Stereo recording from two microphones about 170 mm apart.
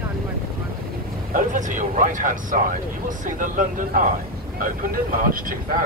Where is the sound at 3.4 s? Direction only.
50° right (ahead or behind).